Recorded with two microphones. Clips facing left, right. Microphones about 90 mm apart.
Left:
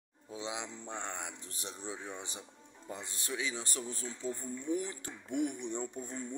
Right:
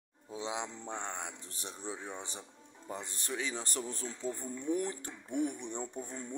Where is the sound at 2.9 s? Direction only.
40° right (ahead or behind).